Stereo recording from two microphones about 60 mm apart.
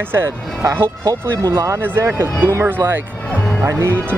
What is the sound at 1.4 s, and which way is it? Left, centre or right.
Speech, right.